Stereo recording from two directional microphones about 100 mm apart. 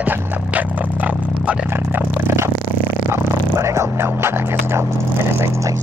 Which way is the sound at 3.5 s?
30° right (ahead or behind).